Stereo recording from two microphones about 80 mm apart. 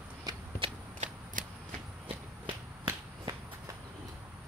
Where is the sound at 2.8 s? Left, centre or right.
Right.